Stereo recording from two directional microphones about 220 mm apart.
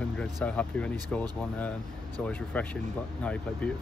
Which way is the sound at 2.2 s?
5° left (ahead or behind).